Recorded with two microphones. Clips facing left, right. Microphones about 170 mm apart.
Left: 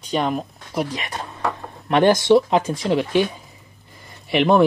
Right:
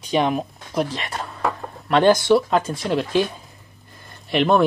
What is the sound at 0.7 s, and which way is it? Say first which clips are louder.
Speech: right 1 dB; 15° left (ahead or behind).